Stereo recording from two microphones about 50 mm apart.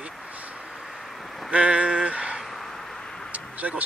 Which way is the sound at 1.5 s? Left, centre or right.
Right.